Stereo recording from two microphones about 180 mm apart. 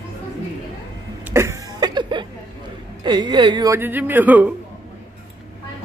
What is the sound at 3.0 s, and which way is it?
A woman's voice, 25° right (ahead or behind).